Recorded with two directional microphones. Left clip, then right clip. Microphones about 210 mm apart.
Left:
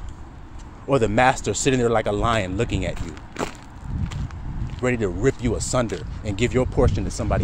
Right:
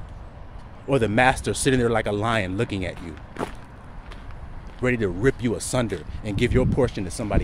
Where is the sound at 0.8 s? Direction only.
5° right (ahead or behind).